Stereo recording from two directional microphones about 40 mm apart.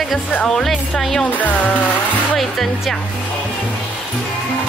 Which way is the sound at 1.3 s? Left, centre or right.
Left.